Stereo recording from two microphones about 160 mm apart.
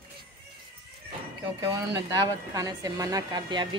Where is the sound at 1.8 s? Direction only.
20° right (ahead or behind).